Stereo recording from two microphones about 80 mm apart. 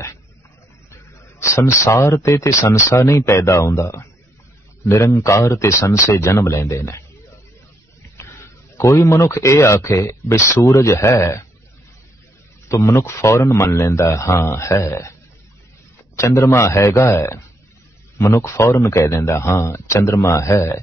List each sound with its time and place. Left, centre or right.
1.4 s speech: left
8.2 s speech: left
12.6 s speech: left
16.2 s speech: left